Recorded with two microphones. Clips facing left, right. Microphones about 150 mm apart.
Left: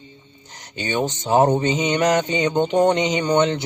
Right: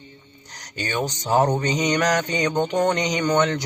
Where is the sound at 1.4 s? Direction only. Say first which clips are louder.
Left 4 dB; 25° left (ahead or behind).